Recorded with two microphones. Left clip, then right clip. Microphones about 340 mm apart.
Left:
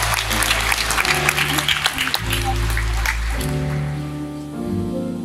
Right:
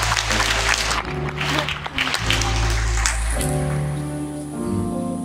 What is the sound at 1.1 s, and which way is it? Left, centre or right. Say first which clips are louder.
Applause: left 10 dB; left.